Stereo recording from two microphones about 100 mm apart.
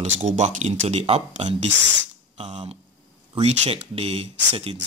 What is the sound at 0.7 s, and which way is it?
Speech, 90° right.